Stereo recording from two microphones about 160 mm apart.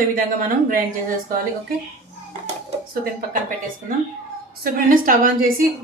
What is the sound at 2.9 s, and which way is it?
Speech, 65° right (ahead or behind).